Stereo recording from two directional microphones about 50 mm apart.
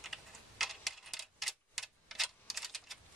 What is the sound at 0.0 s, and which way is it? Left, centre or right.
Typewriter, centre.